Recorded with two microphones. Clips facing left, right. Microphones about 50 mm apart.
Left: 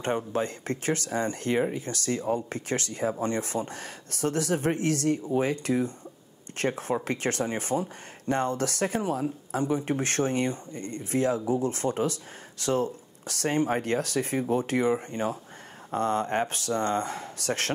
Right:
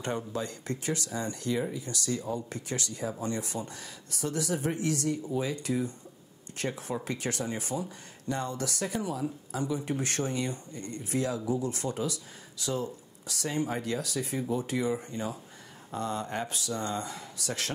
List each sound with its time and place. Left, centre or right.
0.0 s speech: left